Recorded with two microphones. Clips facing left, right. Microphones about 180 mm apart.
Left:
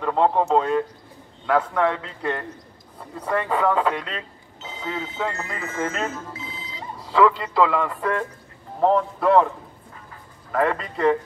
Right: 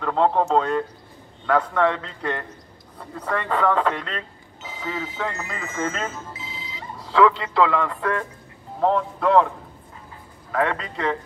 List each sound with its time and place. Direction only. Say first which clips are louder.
0.0 s a man's voice: even; 5° left (ahead or behind)
4.6 s speech: even; 20° left (ahead or behind)
5.8 s speech: even; 10° left (ahead or behind)
6.3 s music: left 2 dB; 20° right (ahead or behind)
7.1 s a man's voice: even; centre (ahead or behind)
10.5 s a man's voice: left 1 dB; centre (ahead or behind)